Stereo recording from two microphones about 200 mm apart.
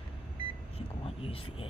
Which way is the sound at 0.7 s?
30° left (ahead or behind).